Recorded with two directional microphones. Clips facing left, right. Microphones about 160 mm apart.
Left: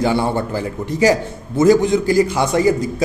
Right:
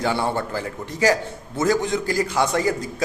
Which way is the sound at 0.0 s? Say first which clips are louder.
Left 5 dB; 15° left (ahead or behind).